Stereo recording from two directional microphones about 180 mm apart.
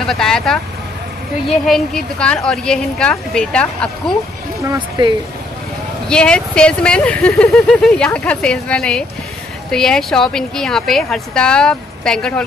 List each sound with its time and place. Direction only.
0.0 s speech: 5° left (ahead or behind)
1.7 s speech: 5° left (ahead or behind)
4.6 s speech: 20° right (ahead or behind)
6.0 s speech: 5° left (ahead or behind)